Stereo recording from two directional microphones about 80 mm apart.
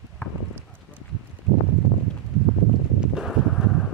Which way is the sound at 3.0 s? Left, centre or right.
Centre.